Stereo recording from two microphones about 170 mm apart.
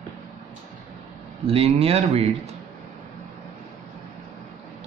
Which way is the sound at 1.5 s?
35° right (ahead or behind).